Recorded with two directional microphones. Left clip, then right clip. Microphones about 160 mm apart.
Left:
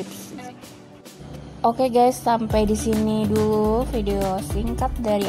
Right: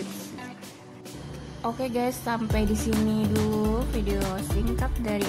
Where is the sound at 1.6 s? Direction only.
30° left (ahead or behind).